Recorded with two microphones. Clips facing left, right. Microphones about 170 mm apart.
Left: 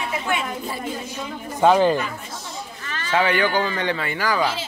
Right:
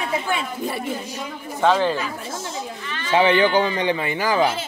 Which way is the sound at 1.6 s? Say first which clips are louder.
Left 3 dB; 15° left (ahead or behind).